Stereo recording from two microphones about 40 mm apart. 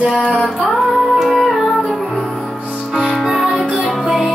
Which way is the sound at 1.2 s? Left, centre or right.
Centre.